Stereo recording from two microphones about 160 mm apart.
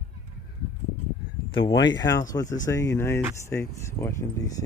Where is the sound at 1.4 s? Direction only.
30° left (ahead or behind).